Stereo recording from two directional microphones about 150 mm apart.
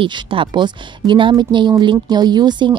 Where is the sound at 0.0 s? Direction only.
35° right (ahead or behind).